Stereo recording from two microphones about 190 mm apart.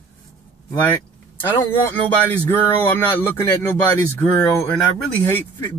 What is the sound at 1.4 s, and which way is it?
Speech, 15° left (ahead or behind).